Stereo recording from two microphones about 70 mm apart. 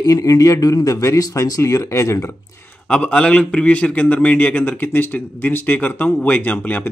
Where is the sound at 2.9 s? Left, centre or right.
Centre.